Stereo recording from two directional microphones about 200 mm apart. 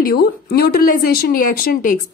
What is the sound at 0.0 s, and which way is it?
Speech, 50° left (ahead or behind).